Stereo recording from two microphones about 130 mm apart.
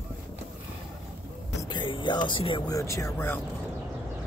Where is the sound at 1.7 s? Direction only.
40° left (ahead or behind).